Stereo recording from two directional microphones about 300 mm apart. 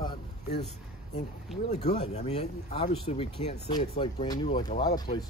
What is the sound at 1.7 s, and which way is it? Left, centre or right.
Speech, left.